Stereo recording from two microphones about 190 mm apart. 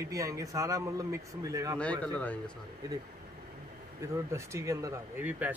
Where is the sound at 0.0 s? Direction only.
15° right (ahead or behind).